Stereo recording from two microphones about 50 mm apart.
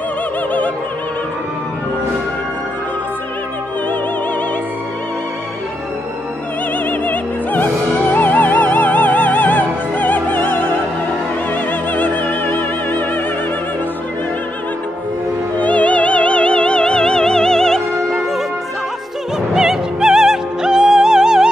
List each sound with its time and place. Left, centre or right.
6.9 s music: left
15.6 s music: left; by 18.2 s centre
19.5 s music: centre